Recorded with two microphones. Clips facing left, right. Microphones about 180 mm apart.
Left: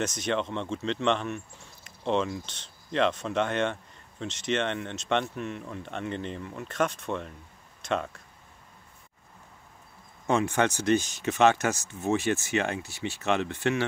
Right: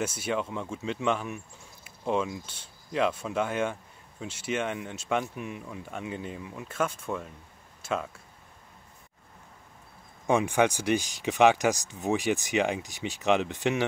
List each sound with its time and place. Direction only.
0.0 s speech: 10° right (ahead or behind)
10.2 s speech: 10° right (ahead or behind)